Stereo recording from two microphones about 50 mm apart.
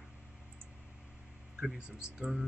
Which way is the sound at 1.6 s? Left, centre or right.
Centre.